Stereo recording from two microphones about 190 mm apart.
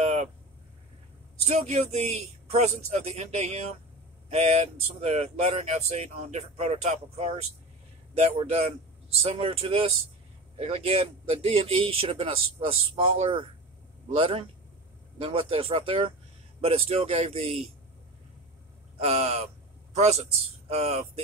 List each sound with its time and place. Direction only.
0.0 s a sound: 35° right (ahead or behind)
1.4 s speech: 35° right (ahead or behind)
18.9 s a man's voice: 35° right (ahead or behind)